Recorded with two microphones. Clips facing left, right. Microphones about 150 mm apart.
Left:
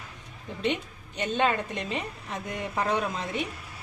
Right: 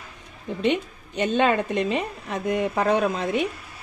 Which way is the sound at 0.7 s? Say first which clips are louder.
Right 6 dB; 90° right.